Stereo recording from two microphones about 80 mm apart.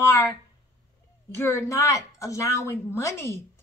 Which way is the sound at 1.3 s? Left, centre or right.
Left.